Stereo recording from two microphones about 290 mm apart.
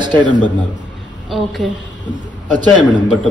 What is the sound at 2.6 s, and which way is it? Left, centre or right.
Speech, centre.